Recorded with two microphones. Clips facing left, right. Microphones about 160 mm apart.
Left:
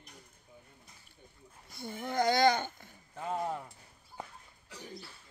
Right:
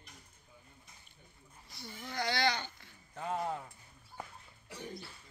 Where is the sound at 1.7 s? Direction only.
55° left (ahead or behind).